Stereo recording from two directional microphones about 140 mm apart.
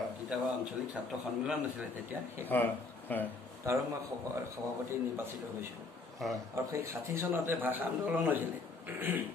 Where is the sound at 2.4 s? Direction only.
15° left (ahead or behind).